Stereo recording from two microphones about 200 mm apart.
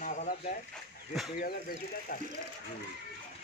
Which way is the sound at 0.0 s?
40° left (ahead or behind).